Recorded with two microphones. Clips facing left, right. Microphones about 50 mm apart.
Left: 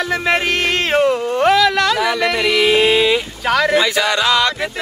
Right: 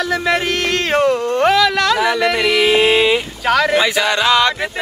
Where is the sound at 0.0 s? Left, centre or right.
Left.